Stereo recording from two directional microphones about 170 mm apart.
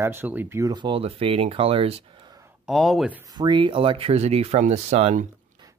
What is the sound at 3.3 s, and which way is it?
Speech, 25° right (ahead or behind).